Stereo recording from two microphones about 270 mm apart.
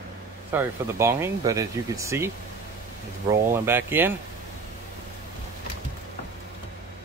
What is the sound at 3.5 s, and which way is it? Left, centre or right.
Speech, centre.